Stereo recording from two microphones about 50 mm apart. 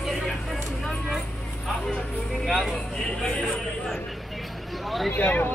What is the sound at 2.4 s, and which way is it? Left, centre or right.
Speech, centre.